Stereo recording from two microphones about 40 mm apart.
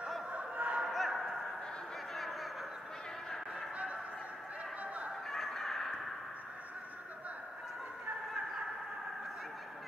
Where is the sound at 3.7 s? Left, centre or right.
Right.